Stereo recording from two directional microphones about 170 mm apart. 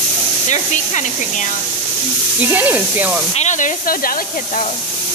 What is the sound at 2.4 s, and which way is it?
Speech, 10° right (ahead or behind).